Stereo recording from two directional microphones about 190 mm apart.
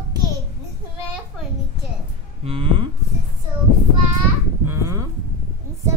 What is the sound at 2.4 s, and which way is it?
Cattle, 30° right (ahead or behind).